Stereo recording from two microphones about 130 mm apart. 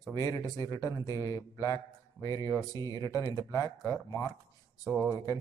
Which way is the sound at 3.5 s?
25° left (ahead or behind).